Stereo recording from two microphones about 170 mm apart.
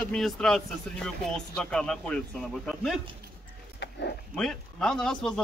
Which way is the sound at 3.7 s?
85° left.